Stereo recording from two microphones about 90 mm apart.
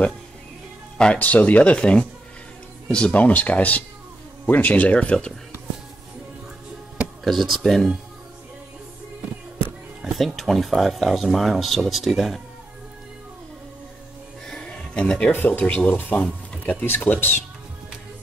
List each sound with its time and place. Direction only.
0.9 s speech: 15° left (ahead or behind)
7.2 s speech: centre (ahead or behind)
10.0 s speech: centre (ahead or behind)
14.5 s a sound: 10° left (ahead or behind)
15.3 s speech: 20° left (ahead or behind)